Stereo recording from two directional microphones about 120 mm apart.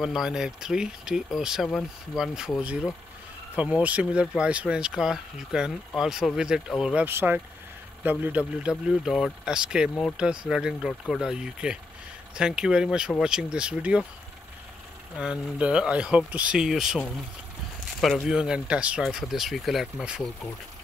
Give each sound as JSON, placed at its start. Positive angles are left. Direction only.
{"t": 0.0, "sound": "speech", "side_deg": -5}
{"t": 7.1, "sound": "speech", "side_deg": -15}
{"t": 15.1, "sound": "speech", "side_deg": -10}
{"t": 18.0, "sound": "speech", "side_deg": 0}